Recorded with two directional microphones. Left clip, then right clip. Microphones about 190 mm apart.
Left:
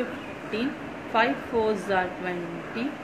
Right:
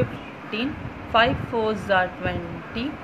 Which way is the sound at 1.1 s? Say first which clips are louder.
Right 4 dB; 25° right (ahead or behind).